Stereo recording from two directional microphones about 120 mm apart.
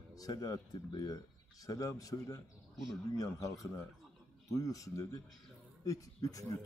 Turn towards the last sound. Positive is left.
turn(degrees=30)  # may be behind; listen again after turning